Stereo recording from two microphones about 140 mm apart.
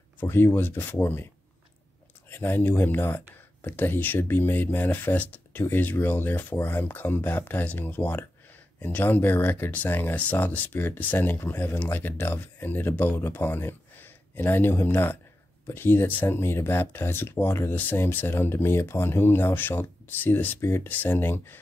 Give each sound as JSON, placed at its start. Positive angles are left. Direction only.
{"t": 0.2, "sound": "speech", "side_deg": 15}